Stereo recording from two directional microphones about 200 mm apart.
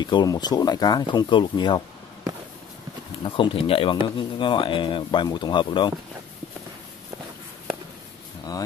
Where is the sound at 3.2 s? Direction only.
25° left (ahead or behind).